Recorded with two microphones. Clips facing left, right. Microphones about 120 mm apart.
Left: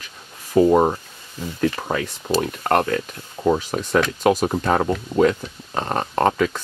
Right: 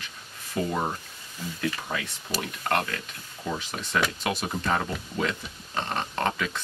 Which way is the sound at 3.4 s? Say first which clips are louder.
Left 13 dB; 50° left (ahead or behind).